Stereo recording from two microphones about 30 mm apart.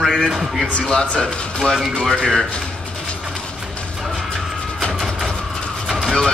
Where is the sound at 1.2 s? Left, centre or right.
Left.